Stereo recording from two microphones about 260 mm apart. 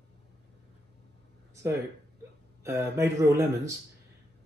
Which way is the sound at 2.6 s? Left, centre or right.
Centre.